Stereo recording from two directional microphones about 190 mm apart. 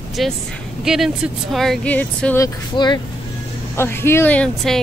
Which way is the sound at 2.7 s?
25° left (ahead or behind).